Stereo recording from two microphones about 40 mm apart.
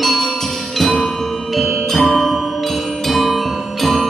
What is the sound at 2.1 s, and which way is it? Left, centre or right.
Music, centre.